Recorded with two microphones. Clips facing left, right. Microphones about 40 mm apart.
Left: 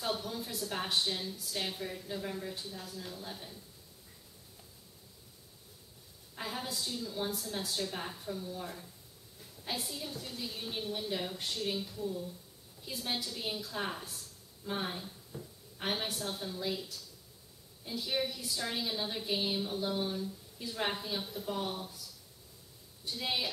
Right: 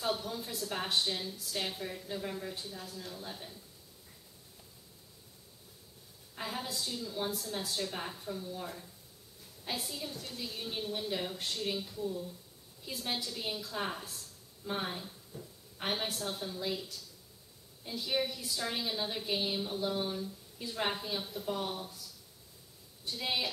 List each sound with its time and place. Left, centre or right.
0.0 s a woman's voice: centre
6.3 s a woman's voice: centre
23.0 s a woman's voice: centre